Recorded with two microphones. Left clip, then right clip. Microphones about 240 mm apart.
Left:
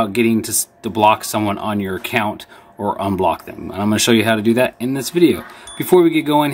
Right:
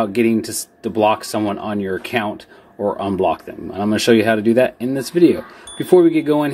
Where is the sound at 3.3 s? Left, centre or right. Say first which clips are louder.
Left 1 dB; left.